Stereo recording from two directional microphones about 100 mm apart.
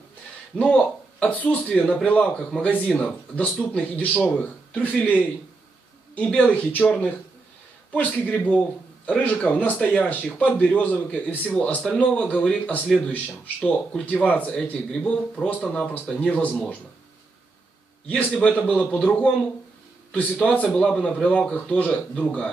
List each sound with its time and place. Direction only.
0.6 s a man's voice: 10° left (ahead or behind)
18.1 s a man's voice: 15° left (ahead or behind)